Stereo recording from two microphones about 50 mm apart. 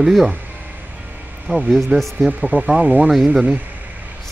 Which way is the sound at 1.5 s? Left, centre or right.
Right.